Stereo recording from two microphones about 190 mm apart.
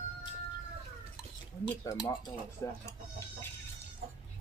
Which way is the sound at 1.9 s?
15° left (ahead or behind).